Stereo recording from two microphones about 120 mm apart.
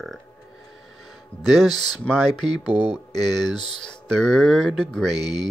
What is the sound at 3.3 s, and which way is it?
Speech, 35° left (ahead or behind).